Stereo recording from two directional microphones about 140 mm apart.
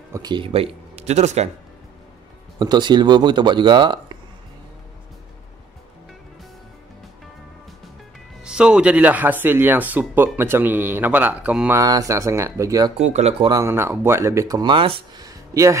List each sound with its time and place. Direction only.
0.1 s speech: 30° right (ahead or behind); by 1.5 s 50° right (ahead or behind)
2.6 s speech: 30° right (ahead or behind)
8.5 s speech: 5° right (ahead or behind)
11.8 s speech: 25° right (ahead or behind)
13.0 s speech: 50° right (ahead or behind)
13.5 s speech: 20° right (ahead or behind)